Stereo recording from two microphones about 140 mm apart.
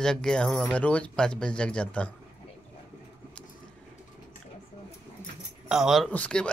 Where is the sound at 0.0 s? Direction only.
5° left (ahead or behind).